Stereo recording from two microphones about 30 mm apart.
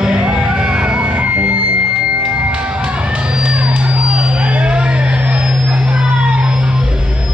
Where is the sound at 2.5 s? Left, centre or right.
Right.